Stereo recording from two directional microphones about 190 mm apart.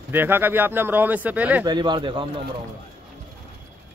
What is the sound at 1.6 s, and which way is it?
Speech, 25° right (ahead or behind).